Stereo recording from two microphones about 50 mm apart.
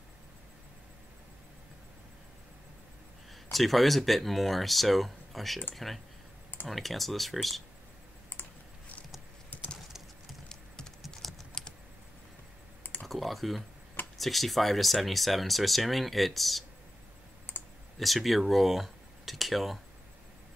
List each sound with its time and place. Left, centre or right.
3.5 s speech: centre
8.3 s typing: left
9.5 s bird: left
11.5 s typing: centre
13.0 s speech: centre
17.9 s speech: centre